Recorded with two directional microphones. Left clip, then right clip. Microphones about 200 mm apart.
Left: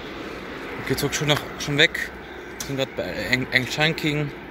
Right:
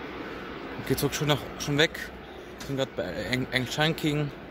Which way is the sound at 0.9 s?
15° right (ahead or behind).